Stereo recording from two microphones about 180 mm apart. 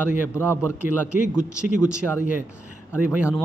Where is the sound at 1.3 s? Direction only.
5° right (ahead or behind).